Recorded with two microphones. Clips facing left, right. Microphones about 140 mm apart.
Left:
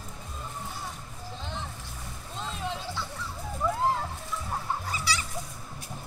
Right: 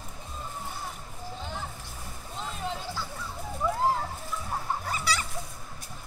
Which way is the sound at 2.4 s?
5° right (ahead or behind).